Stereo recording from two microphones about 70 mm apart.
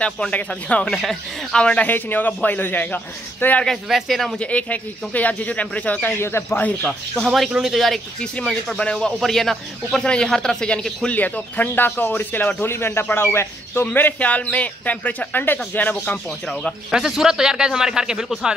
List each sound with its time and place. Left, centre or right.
0.0 s a man's voice: centre
0.9 s speech: centre
1.6 s a man's voice: centre
1.9 s speech: left
3.6 s speech: centre
4.4 s speech: centre
6.2 s speech: left
6.8 s speech: centre
7.2 s a man's voice: centre
8.2 s a man's voice: centre
11.1 s speech: left
13.9 s speech: left
16.3 s a man's voice: centre
16.9 s a man's voice: centre